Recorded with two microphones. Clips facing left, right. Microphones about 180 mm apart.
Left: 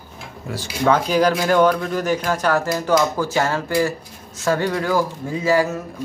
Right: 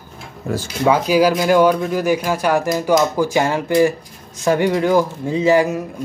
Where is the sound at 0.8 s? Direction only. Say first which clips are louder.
Right 2 dB; 10° right (ahead or behind).